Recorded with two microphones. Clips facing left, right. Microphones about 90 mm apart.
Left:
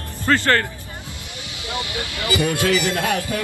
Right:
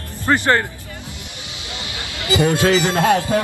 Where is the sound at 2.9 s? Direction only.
25° right (ahead or behind).